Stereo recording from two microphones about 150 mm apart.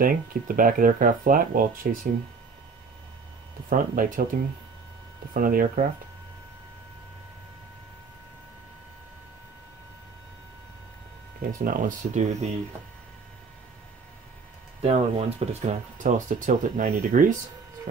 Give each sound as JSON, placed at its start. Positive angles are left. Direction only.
{"t": 0.0, "sound": "speech", "side_deg": -70}
{"t": 3.7, "sound": "speech", "side_deg": -65}
{"t": 5.3, "sound": "speech", "side_deg": -70}
{"t": 11.5, "sound": "speech", "side_deg": -65}
{"t": 14.8, "sound": "speech", "side_deg": -40}